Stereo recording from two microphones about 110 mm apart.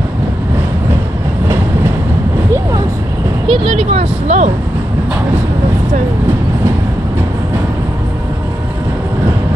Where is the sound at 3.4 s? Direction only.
55° right (ahead or behind); by 4.5 s 90° right.